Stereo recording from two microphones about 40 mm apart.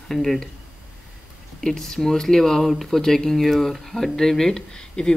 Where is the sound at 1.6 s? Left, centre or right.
Centre.